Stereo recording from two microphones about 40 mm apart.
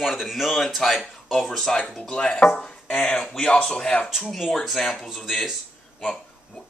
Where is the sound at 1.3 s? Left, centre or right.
Centre.